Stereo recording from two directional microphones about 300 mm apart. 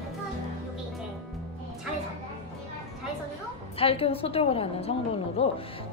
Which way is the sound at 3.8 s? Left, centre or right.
Centre.